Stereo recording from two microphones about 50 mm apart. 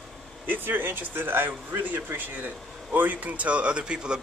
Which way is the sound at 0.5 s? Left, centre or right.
Right.